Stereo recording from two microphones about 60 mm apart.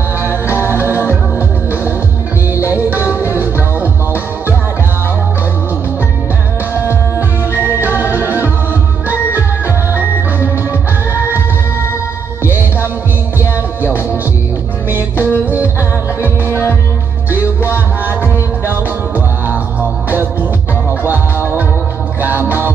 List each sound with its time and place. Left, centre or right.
0.5 s music: left
2.7 s music: right
14.9 s music: right
17.3 s music: left
18.7 s music: right